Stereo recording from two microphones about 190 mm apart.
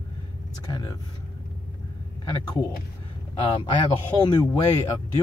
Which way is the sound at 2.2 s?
20° left (ahead or behind).